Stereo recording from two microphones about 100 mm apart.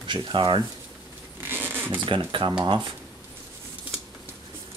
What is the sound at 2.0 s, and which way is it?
Speech, 55° right (ahead or behind).